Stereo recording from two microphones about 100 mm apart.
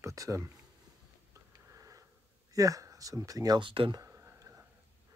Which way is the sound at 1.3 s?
35° right (ahead or behind).